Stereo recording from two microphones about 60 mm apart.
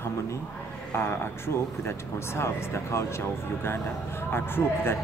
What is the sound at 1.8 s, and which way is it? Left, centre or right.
Speech, left.